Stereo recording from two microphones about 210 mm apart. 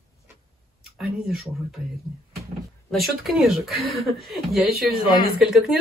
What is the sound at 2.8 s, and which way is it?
Speech, centre (ahead or behind).